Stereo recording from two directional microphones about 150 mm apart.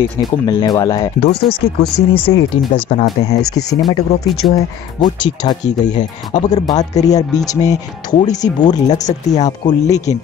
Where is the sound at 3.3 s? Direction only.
90° left.